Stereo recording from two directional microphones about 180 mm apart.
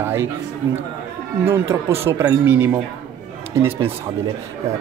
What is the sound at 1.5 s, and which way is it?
Speech, 15° right (ahead or behind).